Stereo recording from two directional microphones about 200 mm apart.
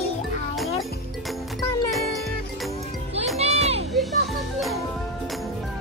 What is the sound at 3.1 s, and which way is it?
Music, 30° right (ahead or behind).